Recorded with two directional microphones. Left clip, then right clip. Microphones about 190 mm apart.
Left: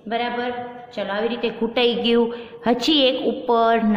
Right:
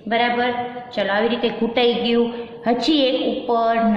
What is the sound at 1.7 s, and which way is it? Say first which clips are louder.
A woman's voice: even; 30° left (ahead or behind).